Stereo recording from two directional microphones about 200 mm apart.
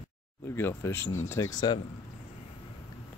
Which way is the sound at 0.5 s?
10° left (ahead or behind).